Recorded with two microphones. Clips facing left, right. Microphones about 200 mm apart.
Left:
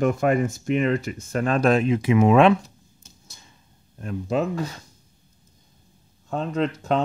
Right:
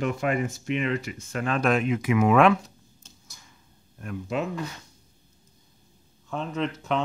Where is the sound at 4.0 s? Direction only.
30° left (ahead or behind).